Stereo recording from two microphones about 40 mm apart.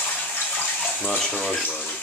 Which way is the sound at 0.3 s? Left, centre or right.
Left.